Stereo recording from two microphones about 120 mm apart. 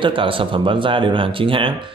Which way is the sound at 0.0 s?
45° right (ahead or behind).